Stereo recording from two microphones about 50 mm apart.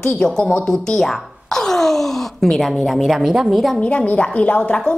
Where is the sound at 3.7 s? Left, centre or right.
Left.